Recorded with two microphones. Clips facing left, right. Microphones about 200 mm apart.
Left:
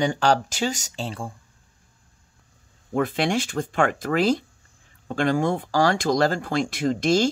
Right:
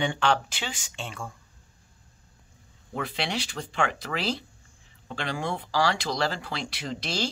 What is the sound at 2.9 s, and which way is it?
Speech, 50° left (ahead or behind).